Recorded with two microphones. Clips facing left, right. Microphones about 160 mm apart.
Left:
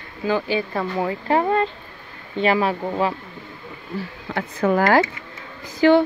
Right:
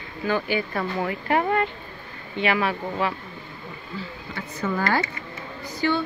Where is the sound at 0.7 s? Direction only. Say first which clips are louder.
Left 3 dB; 20° left (ahead or behind).